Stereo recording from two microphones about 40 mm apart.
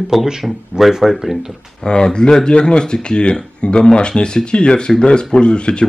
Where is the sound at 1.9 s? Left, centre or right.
Left.